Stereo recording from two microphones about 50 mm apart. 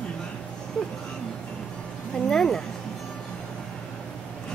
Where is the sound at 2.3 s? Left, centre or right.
Centre.